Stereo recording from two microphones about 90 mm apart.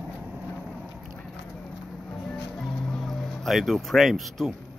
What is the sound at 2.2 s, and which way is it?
Music, 5° left (ahead or behind).